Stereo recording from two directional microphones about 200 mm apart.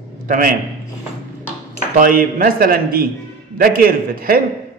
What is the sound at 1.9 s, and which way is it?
A man's voice, 45° right (ahead or behind).